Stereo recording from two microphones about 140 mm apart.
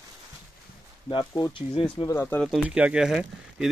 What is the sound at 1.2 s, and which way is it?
Speech, 20° left (ahead or behind).